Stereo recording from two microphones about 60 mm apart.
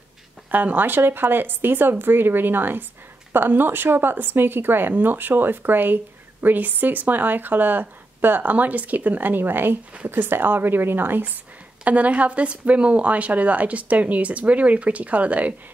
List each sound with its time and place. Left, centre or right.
0.5 s speech: right
11.8 s a woman's voice: right